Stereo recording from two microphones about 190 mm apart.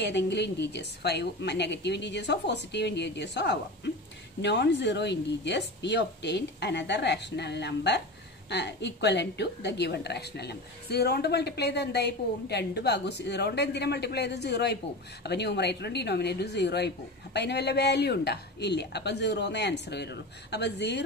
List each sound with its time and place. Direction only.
0.0 s a woman's voice: 65° left (ahead or behind)